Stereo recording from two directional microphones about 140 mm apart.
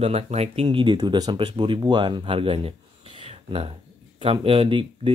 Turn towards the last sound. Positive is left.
turn(degrees=-40)  # may be behind; listen again after turning